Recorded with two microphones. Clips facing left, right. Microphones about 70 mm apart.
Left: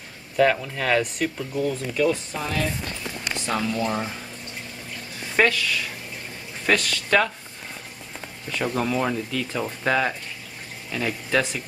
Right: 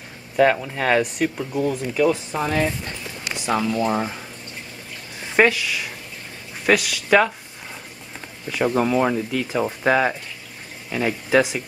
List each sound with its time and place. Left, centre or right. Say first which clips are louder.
0.4 s speech: right 3 dB; centre
3.4 s speech: right 5 dB; centre
5.3 s speech: right 3 dB; centre
8.5 s speech: right 5 dB; centre